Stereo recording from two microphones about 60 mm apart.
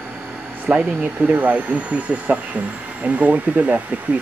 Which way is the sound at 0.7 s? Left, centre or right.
Right.